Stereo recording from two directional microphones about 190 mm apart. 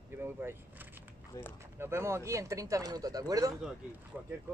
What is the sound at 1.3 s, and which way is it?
Speech, 15° left (ahead or behind).